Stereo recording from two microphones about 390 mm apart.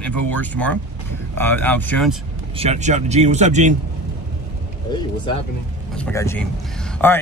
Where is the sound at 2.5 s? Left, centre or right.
Centre.